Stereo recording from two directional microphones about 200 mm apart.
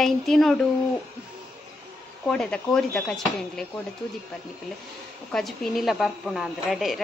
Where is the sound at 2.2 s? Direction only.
5° left (ahead or behind).